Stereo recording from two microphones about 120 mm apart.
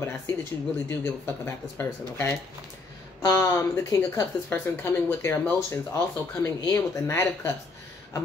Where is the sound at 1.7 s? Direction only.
20° left (ahead or behind).